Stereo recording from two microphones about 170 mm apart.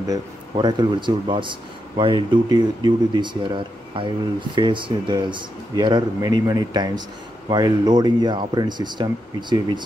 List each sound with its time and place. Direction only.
0.1 s speech: 25° right (ahead or behind)